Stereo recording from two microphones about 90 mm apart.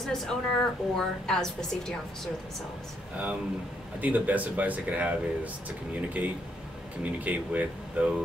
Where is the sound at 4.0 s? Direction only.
15° right (ahead or behind).